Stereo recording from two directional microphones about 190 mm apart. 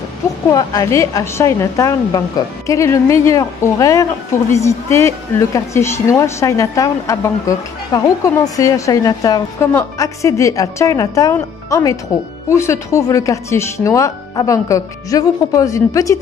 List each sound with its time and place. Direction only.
0.5 s a woman's voice: 15° left (ahead or behind)